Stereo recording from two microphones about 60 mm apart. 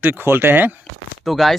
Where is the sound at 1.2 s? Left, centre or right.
Centre.